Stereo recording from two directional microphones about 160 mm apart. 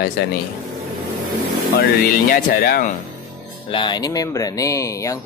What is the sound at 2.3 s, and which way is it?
Speech, 65° left (ahead or behind).